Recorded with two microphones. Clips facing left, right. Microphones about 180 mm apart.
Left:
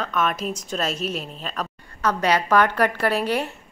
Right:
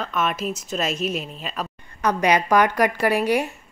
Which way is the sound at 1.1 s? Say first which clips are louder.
Right 2 dB; 35° left (ahead or behind).